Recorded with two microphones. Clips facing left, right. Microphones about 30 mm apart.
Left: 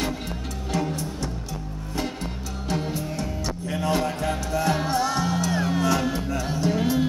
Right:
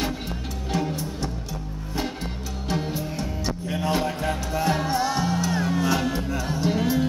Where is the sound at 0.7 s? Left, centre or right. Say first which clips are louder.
Even; centre.